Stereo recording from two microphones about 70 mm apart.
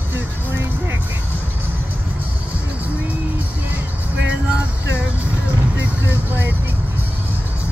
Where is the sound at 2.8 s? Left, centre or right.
Right.